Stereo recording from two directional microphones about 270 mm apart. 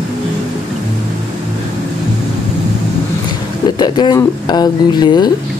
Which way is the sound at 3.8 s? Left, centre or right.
Centre.